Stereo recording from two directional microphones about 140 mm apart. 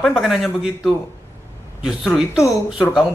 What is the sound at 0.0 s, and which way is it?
A man's voice, centre (ahead or behind).